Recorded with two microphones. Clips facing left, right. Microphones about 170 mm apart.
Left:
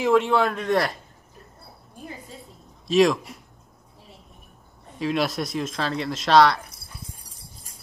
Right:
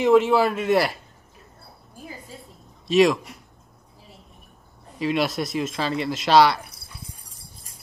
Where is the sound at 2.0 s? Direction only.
Centre (ahead or behind).